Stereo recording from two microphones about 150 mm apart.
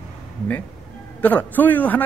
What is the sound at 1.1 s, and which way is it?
Speech, 10° left (ahead or behind).